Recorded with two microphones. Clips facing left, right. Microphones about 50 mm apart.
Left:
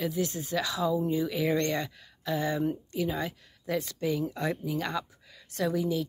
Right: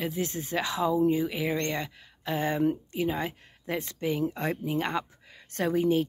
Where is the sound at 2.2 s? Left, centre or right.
Right.